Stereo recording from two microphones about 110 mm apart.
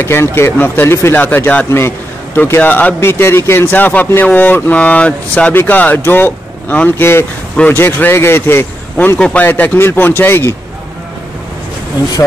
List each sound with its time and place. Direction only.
0.0 s speech: 25° left (ahead or behind)
9.5 s speech: 20° left (ahead or behind)